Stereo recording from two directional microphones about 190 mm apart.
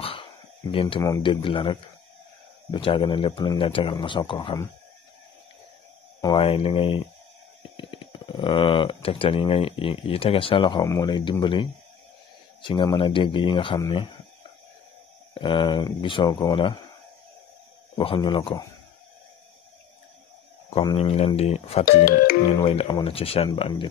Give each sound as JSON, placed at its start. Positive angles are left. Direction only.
{"t": 0.0, "sound": "a sound", "side_deg": 30}
{"t": 1.0, "sound": "speech", "side_deg": 20}
{"t": 6.2, "sound": "speech", "side_deg": 30}
{"t": 15.3, "sound": "speech", "side_deg": 25}
{"t": 17.9, "sound": "speech", "side_deg": 25}
{"t": 20.9, "sound": "speech", "side_deg": 30}
{"t": 22.0, "sound": "speech", "side_deg": 50}
{"t": 22.6, "sound": "speech", "side_deg": 30}